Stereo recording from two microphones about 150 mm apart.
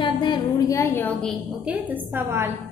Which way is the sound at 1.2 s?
5° right (ahead or behind).